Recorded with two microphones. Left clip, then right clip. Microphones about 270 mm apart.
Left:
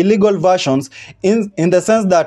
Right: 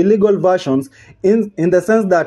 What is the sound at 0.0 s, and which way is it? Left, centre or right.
Speech, left.